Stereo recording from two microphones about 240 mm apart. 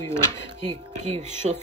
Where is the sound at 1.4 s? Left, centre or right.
Right.